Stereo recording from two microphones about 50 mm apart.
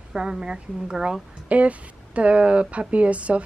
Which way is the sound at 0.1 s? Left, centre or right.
Centre.